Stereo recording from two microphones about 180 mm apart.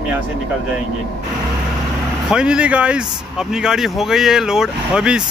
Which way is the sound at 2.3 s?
5° right (ahead or behind).